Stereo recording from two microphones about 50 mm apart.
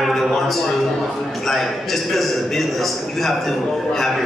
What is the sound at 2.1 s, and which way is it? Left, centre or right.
A man's voice, centre.